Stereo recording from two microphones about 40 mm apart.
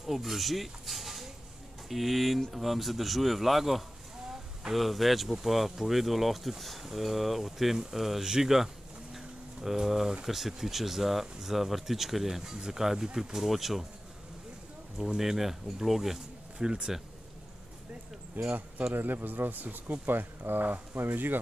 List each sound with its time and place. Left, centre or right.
0.0 s speech: centre
9.1 s a sound: centre
10.2 s speech: centre
15.1 s speech: centre
16.6 s speech: right
18.4 s speech: right
20.1 s speech: right